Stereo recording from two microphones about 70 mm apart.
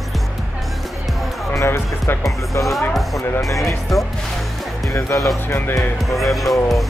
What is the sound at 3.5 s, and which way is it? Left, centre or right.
Speech, left.